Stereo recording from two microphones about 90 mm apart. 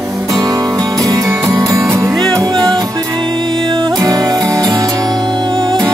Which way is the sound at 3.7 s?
55° right (ahead or behind).